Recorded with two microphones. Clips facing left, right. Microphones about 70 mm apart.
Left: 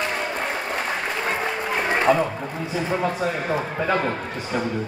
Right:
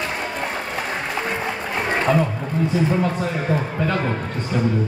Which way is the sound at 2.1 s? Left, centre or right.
Centre.